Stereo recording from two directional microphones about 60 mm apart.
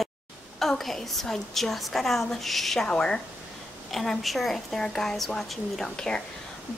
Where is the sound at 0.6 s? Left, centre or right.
Centre.